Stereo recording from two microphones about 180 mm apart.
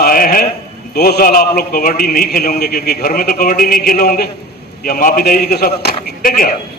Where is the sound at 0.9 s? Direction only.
60° left (ahead or behind).